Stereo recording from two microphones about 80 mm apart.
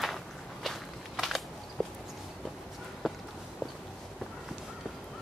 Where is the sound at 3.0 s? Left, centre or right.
Centre.